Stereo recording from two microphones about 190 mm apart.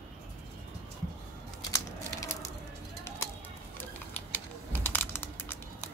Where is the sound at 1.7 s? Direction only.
15° left (ahead or behind).